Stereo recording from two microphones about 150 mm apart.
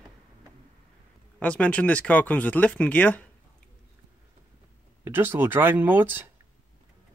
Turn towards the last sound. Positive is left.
turn(degrees=-15)  # may be behind; listen again after turning